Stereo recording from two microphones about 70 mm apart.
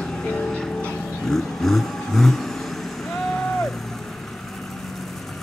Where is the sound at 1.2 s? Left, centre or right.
Centre.